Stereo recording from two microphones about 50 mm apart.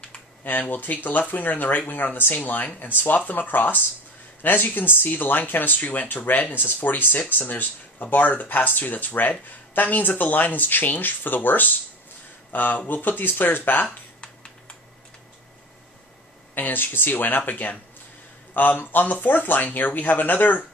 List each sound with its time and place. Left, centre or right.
0.4 s speech: left
14.2 s a sound: left
16.5 s speech: left